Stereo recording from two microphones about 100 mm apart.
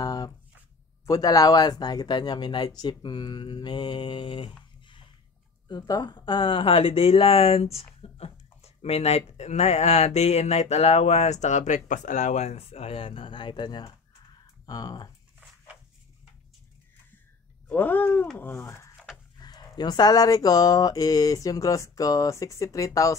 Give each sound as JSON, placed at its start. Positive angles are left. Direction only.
{"t": 0.0, "sound": "a sound", "side_deg": 40}
{"t": 1.0, "sound": "speech", "side_deg": 35}
{"t": 5.7, "sound": "speech", "side_deg": 45}
{"t": 12.4, "sound": "speech", "side_deg": 90}
{"t": 17.6, "sound": "speech", "side_deg": 20}
{"t": 19.3, "sound": "speech", "side_deg": 45}